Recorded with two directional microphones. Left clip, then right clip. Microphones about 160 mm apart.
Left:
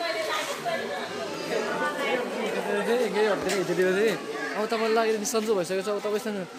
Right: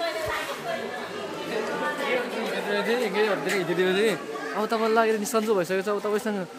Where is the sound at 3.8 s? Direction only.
75° right (ahead or behind).